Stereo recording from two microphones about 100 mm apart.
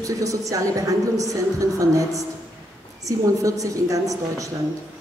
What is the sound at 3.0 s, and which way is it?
Speech, 35° right (ahead or behind).